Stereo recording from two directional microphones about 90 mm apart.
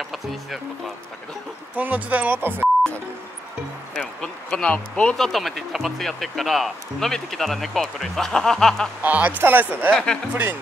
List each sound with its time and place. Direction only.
0.0 s speech: centre (ahead or behind)
1.8 s speech: 15° right (ahead or behind)
4.2 s bee: 10° left (ahead or behind)
5.1 s speech: centre (ahead or behind)
9.0 s speech: 15° right (ahead or behind)